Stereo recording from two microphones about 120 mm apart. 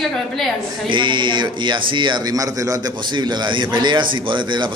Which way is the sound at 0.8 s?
40° right (ahead or behind).